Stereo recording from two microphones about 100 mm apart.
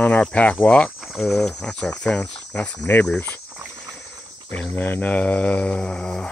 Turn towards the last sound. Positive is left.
turn(degrees=5)  # may be behind; listen again after turning